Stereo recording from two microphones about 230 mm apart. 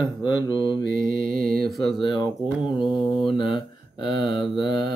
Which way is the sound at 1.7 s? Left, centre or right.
Centre.